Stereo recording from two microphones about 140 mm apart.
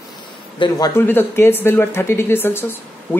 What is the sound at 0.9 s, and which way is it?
Speech, 15° left (ahead or behind).